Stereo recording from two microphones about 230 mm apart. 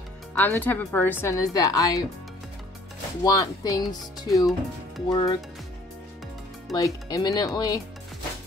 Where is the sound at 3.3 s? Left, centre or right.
Centre.